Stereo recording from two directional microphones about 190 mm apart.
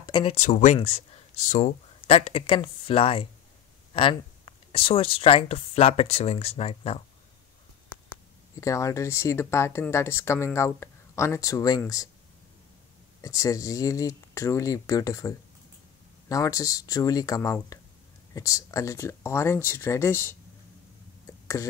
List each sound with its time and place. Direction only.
0.0 s speech: 25° left (ahead or behind)
8.5 s speech: 15° left (ahead or behind)
13.2 s speech: 20° left (ahead or behind)